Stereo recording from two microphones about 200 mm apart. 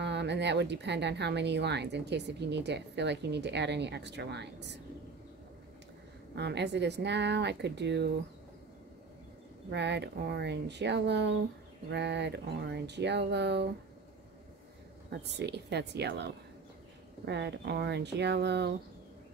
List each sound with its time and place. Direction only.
0.0 s speech: 60° right (ahead or behind)
6.3 s speech: 60° right (ahead or behind)
9.7 s speech: 60° right (ahead or behind)
15.0 s speech: 55° right (ahead or behind)